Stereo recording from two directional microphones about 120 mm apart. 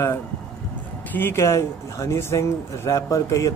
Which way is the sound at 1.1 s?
20° left (ahead or behind).